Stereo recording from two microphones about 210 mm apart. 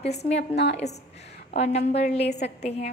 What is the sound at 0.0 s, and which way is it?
A woman's voice, 30° left (ahead or behind).